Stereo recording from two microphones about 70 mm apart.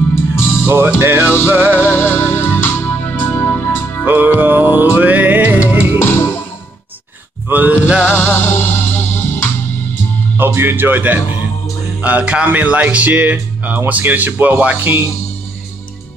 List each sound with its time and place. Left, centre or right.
0.7 s speech: right
1.9 s music: left
4.0 s music: right
5.9 s music: left
7.4 s a sound: right
8.1 s music: left
10.3 s speech: right